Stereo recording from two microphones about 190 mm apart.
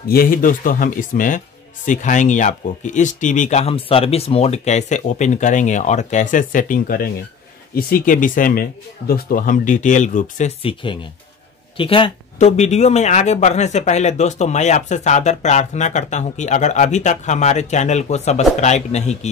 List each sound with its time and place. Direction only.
0.1 s speech: 50° left (ahead or behind)